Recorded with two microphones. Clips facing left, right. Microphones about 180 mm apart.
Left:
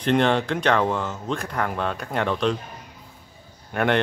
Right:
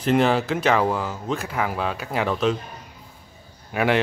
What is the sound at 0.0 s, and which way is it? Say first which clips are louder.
Speech: right 1 dB; 5° right (ahead or behind).